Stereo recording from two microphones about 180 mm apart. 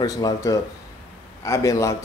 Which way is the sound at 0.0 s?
20° left (ahead or behind).